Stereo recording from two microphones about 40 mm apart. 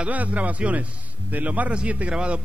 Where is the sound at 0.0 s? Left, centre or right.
Right.